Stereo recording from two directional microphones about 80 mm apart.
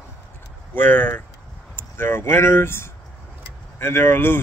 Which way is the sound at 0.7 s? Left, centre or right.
Left.